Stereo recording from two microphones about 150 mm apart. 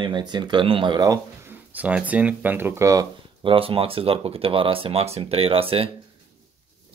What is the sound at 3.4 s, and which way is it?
Speech, 35° right (ahead or behind).